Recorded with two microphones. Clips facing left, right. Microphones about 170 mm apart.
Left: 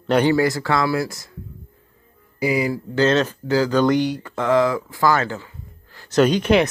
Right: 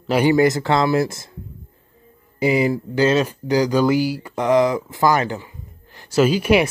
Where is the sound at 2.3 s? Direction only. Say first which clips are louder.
Right 3 dB; 25° right (ahead or behind).